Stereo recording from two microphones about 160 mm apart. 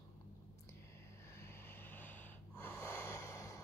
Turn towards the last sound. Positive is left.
turn(degrees=20)  # may be behind; listen again after turning